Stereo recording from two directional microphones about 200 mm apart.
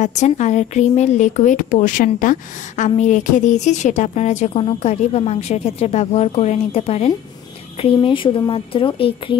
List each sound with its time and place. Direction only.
0.0 s a woman's voice: 35° left (ahead or behind)